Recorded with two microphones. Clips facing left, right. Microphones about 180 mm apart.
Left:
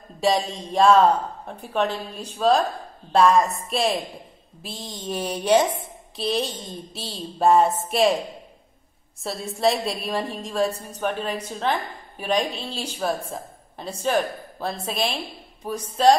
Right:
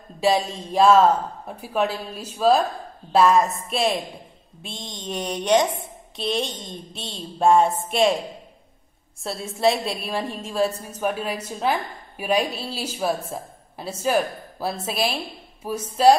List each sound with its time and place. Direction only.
0.2 s a woman's voice: centre (ahead or behind)
9.2 s a woman's voice: centre (ahead or behind)